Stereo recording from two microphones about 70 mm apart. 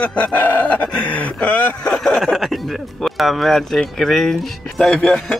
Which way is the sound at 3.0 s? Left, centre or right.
Centre.